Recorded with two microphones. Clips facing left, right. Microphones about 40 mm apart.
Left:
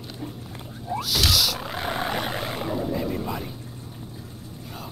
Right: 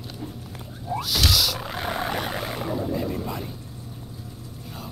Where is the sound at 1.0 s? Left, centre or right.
Centre.